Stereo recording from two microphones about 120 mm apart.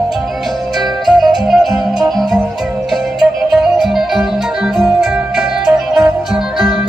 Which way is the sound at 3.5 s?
Centre (ahead or behind).